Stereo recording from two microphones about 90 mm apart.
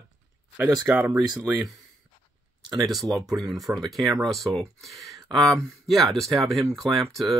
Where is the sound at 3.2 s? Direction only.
40° right (ahead or behind).